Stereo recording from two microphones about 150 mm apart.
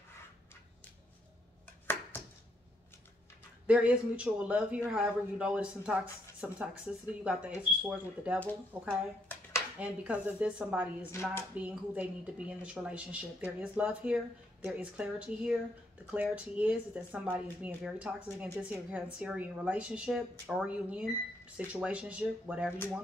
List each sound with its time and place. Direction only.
3.6 s speech: 10° right (ahead or behind)
11.1 s speech: 15° left (ahead or behind)
11.5 s speech: 10° right (ahead or behind)